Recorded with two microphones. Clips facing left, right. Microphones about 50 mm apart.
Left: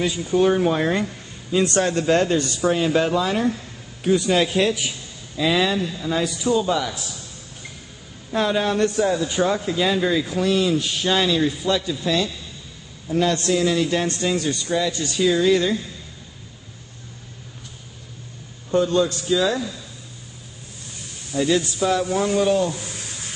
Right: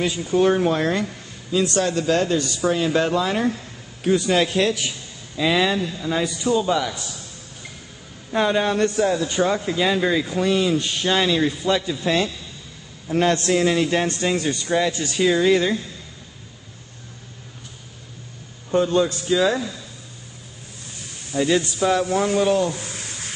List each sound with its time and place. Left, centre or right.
0.0 s a man's voice: centre
0.7 s speech: centre
1.6 s a man's voice: left
2.7 s a man's voice: centre
5.4 s a man's voice: centre
8.3 s a man's voice: centre
18.7 s speech: right
21.3 s a man's voice: centre